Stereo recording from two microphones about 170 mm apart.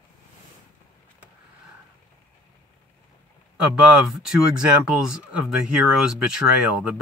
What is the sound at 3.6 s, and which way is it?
Speech, 5° right (ahead or behind).